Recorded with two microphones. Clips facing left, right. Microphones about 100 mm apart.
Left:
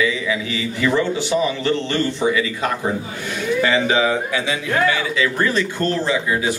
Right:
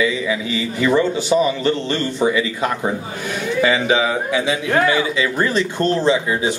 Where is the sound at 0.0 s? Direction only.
25° right (ahead or behind).